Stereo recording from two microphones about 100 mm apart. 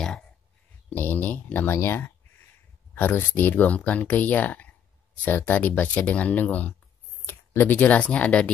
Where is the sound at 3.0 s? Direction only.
20° left (ahead or behind).